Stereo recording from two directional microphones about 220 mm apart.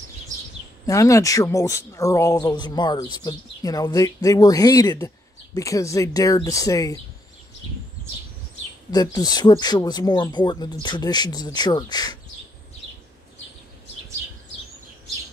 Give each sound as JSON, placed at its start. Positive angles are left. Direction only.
{"t": 0.8, "sound": "speech", "side_deg": 15}
{"t": 8.9, "sound": "speech", "side_deg": 15}